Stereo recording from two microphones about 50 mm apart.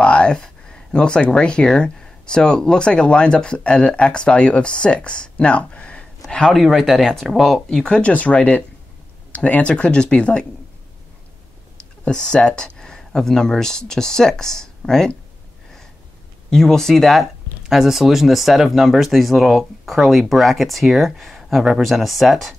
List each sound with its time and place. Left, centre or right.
0.0 s a sound: left
0.4 s speech: centre
6.4 s speech: centre
7.8 s speech: left
12.1 s speech: centre
16.4 s speech: centre